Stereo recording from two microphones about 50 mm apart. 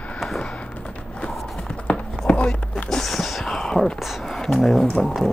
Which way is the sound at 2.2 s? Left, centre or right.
Left.